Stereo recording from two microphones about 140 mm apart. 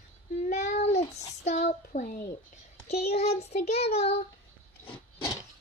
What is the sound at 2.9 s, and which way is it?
Speech, 50° left (ahead or behind).